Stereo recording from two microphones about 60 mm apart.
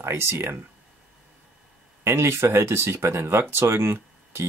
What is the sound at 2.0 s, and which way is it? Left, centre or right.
Speech, right.